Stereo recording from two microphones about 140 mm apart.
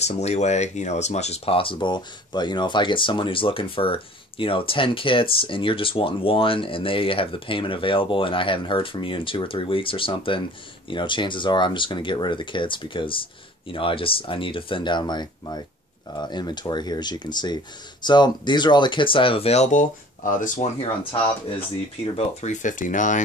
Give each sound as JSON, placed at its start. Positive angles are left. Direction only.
{"t": 0.1, "sound": "speech", "side_deg": 50}
{"t": 22.1, "sound": "speech", "side_deg": 55}